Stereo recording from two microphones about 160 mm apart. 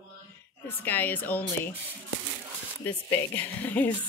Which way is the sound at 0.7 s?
10° left (ahead or behind).